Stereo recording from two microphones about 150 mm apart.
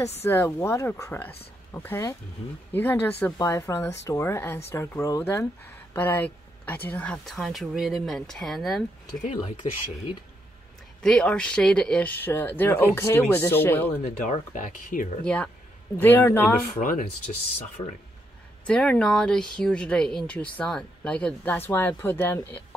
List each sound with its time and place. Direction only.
0.2 s speech: 15° left (ahead or behind)
9.1 s speech: 55° left (ahead or behind)
11.0 s speech: 5° left (ahead or behind)
14.0 s speech: 55° left (ahead or behind)
15.2 s speech: 5° left (ahead or behind)
16.8 s speech: 65° left (ahead or behind)
18.7 s speech: 5° left (ahead or behind)